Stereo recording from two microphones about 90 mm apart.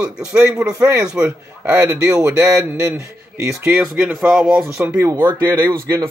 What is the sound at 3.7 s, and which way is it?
Speech, 10° right (ahead or behind).